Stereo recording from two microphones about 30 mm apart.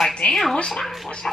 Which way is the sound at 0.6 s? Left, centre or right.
Left.